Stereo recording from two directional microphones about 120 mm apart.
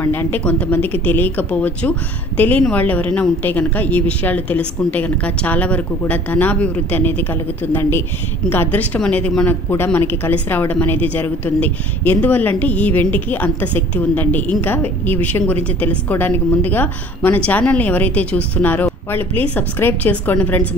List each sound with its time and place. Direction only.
0.0 s a woman's voice: 15° left (ahead or behind)
8.5 s a woman's voice: 15° left (ahead or behind)